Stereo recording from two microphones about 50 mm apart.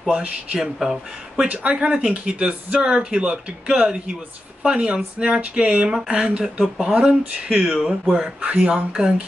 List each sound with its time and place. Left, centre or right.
0.1 s speech: right
0.7 s speech: centre
1.5 s speech: right
7.6 s speech: centre
8.4 s speech: right